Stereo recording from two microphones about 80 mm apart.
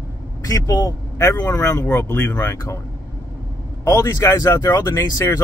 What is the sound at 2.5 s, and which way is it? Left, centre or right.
Speech, left.